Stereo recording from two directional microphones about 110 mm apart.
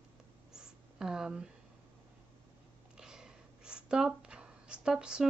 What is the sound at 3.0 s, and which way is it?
Speech, 5° right (ahead or behind).